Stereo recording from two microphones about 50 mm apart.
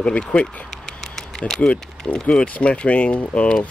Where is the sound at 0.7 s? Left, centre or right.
Centre.